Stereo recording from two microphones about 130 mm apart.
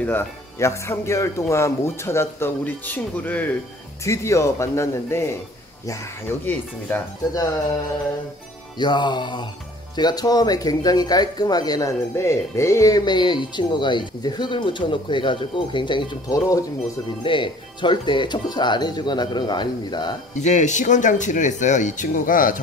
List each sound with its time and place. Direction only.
0.0 s speech: 20° left (ahead or behind)
8.7 s speech: 35° left (ahead or behind)
20.3 s speech: 65° left (ahead or behind); by 22.6 s 90° left